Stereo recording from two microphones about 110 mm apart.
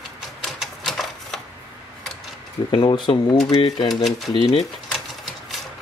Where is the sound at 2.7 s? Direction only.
50° left (ahead or behind).